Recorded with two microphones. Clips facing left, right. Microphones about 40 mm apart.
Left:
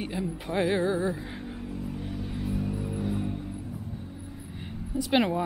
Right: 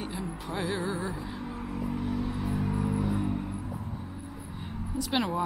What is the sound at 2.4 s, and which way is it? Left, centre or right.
Music, right.